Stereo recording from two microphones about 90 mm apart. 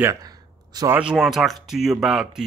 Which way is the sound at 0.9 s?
5° right (ahead or behind).